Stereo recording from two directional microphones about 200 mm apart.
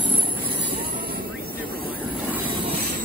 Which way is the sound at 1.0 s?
45° right (ahead or behind).